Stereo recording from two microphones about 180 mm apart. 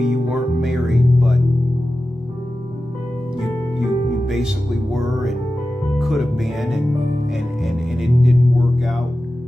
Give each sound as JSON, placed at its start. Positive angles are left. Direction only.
{"t": 0.0, "sound": "music", "side_deg": 0}
{"t": 3.3, "sound": "music", "side_deg": 0}